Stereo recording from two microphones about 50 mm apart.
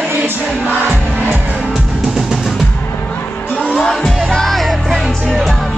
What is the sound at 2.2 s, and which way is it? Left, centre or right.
Music, centre.